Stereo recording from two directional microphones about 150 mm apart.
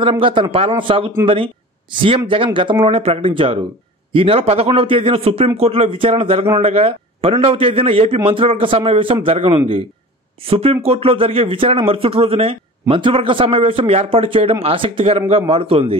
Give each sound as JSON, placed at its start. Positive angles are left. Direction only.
{"t": 0.0, "sound": "speech", "side_deg": -35}